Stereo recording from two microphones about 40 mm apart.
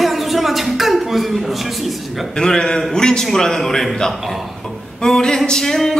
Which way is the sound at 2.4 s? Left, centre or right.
Centre.